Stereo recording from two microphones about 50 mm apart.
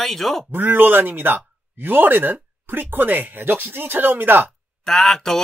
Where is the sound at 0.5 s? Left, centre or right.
Right.